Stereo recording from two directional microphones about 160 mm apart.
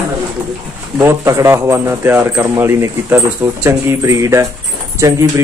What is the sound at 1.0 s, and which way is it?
Speech, 20° right (ahead or behind).